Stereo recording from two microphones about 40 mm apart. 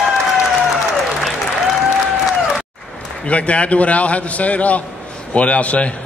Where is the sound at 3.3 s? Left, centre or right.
Left.